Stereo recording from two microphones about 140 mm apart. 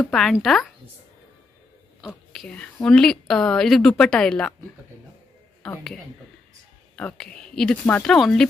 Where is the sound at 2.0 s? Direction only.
Centre (ahead or behind).